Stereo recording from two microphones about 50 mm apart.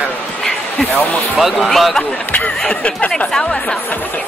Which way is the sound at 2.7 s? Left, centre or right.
Left.